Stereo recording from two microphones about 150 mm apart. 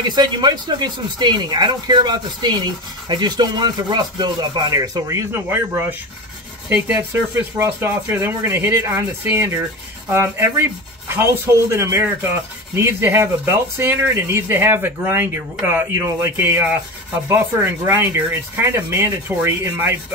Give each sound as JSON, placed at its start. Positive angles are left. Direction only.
{"t": 0.1, "sound": "speech", "side_deg": -30}
{"t": 11.7, "sound": "speech", "side_deg": -15}